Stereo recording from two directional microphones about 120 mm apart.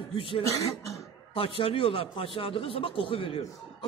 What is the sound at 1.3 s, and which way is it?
A man's voice, 50° left (ahead or behind).